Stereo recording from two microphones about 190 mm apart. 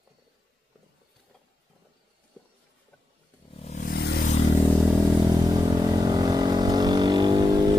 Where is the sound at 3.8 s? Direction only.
55° left (ahead or behind).